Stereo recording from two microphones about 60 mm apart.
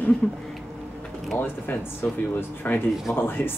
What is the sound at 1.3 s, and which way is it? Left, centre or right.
Speech, left.